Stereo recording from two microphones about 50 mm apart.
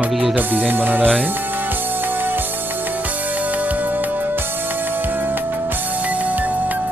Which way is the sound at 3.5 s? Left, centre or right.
Right.